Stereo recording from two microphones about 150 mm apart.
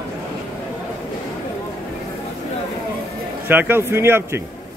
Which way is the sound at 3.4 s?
15° right (ahead or behind).